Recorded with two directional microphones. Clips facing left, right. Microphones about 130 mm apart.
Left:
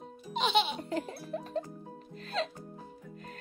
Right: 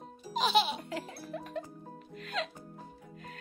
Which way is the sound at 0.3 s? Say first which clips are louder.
Right 1 dB; centre (ahead or behind).